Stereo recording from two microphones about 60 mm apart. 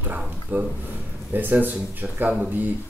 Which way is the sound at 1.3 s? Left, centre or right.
Right.